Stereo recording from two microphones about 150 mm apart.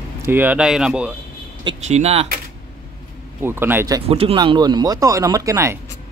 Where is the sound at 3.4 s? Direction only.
15° right (ahead or behind).